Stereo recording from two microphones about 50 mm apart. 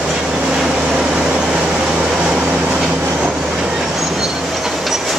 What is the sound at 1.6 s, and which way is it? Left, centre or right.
Vehicle, centre.